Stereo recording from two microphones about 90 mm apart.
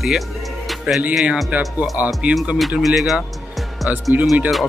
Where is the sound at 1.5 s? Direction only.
20° right (ahead or behind).